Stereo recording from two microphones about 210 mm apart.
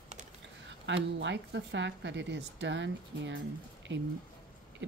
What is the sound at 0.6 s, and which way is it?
Speech, 60° right (ahead or behind).